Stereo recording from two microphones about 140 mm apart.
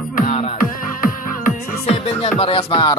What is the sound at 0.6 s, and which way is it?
Music, 85° left.